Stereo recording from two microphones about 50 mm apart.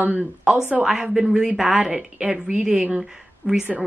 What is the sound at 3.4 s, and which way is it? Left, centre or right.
Speech, right.